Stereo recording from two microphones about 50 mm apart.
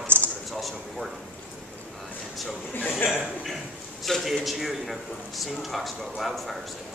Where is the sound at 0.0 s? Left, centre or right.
Right.